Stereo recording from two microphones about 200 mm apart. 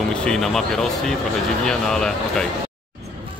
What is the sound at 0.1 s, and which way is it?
Speech, 5° left (ahead or behind).